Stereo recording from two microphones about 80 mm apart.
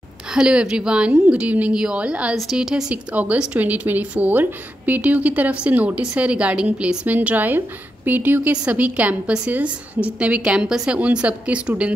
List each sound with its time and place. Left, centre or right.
0.3 s a woman's voice: centre
2.3 s a woman's voice: centre